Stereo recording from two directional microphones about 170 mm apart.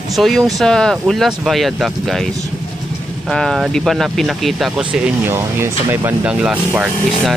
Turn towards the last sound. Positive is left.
turn(degrees=-5)  # may be behind; listen again after turning